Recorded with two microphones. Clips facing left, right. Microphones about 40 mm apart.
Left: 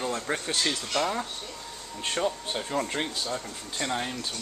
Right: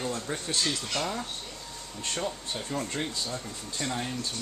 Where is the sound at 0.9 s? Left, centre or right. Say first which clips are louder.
Left 4 dB; left.